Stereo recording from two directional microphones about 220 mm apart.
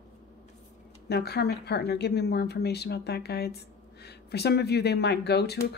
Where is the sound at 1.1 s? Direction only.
45° left (ahead or behind).